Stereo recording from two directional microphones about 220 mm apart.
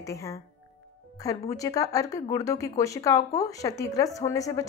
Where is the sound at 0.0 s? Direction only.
15° left (ahead or behind).